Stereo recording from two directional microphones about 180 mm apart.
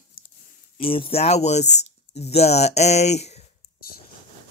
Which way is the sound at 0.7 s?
30° left (ahead or behind).